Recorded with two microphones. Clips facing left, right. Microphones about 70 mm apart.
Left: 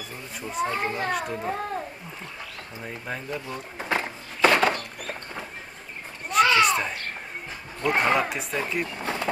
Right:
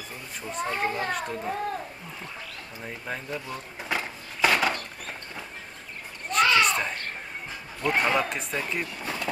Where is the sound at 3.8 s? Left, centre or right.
Left.